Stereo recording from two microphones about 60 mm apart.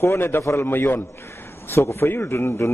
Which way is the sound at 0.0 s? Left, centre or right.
Left.